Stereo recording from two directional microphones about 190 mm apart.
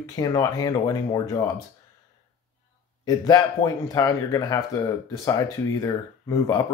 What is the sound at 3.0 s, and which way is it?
Speech, 20° left (ahead or behind).